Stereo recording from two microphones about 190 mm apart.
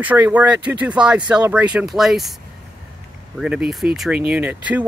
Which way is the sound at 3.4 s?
5° right (ahead or behind).